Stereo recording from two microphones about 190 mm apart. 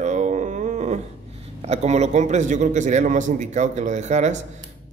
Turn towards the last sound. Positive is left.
turn(degrees=-40)  # may be behind; listen again after turning